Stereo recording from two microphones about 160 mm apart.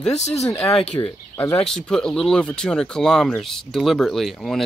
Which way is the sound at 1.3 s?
15° left (ahead or behind).